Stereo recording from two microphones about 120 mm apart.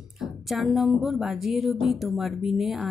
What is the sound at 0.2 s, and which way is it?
Speech, centre (ahead or behind).